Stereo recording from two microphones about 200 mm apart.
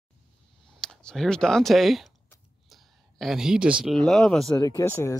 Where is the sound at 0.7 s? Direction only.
5° left (ahead or behind).